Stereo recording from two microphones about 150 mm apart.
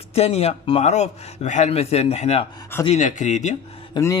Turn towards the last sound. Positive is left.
turn(degrees=25)  # may be behind; listen again after turning